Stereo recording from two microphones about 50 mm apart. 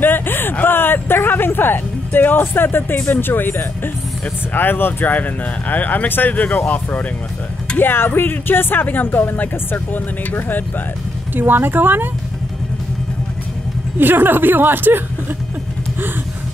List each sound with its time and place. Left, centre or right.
0.0 s a sound: left
4.6 s speech: left
7.7 s speech: left
11.3 s a woman's voice: right
13.9 s a woman's voice: right